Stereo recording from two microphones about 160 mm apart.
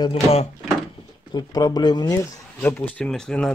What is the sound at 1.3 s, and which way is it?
Speech, 25° left (ahead or behind).